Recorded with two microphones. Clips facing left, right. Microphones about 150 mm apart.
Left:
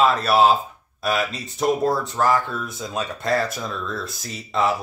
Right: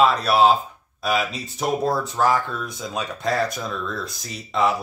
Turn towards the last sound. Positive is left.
turn(degrees=0)  # may be behind; listen again after turning